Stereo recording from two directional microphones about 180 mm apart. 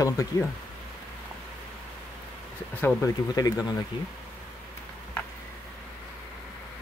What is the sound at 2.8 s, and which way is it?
Speech, 15° left (ahead or behind).